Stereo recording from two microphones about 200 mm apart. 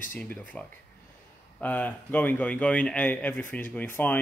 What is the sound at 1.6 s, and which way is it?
A man's voice, 10° left (ahead or behind).